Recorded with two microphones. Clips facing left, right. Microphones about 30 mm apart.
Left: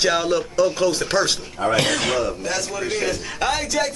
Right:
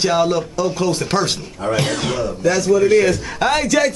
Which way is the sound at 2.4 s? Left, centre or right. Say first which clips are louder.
Right 11 dB; right.